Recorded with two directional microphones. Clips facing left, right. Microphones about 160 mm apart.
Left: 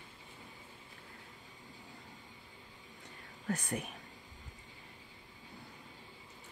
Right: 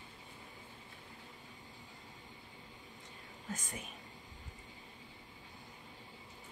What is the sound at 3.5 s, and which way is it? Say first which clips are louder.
Speech: left 8 dB; 65° left (ahead or behind).